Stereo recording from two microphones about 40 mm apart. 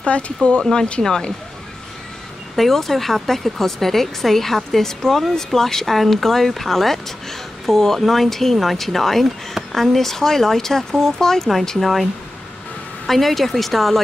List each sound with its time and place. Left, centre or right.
0.1 s speech: left
0.6 s speech: centre
2.5 s speech: centre